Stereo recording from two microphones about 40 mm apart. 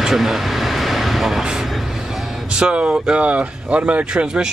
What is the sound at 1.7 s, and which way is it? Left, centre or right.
Music, centre.